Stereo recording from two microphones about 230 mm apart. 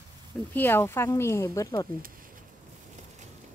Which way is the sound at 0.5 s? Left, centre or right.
Centre.